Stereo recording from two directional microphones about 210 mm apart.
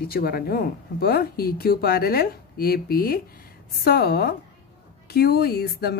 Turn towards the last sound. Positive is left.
turn(degrees=50)  # may be behind; listen again after turning